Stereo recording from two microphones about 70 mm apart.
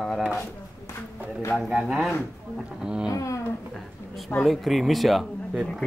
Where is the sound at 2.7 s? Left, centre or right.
Centre.